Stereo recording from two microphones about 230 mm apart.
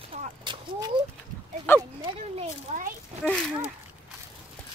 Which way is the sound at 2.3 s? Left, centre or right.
Right.